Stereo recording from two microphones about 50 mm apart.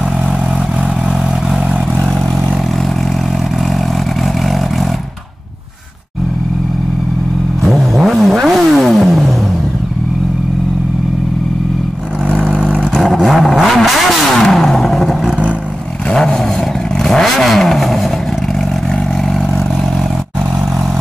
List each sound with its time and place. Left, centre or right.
7.6 s vehicle: centre
12.4 s vehicle: right
12.9 s vehicle: centre
16.1 s a sound: centre
17.1 s vehicle: centre